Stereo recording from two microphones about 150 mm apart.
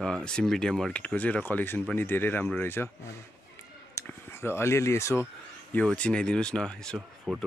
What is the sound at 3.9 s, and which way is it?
Speech, 15° left (ahead or behind).